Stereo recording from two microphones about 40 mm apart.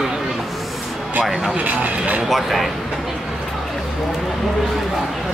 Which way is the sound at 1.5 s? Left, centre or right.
Right.